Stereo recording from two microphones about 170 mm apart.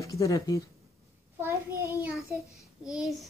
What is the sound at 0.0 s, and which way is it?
Speech, 20° left (ahead or behind).